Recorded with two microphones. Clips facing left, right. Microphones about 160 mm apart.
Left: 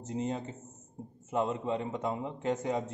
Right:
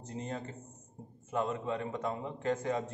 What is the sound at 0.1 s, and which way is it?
A man's voice, 20° left (ahead or behind).